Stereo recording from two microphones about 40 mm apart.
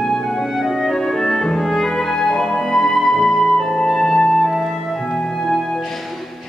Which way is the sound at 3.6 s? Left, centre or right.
Centre.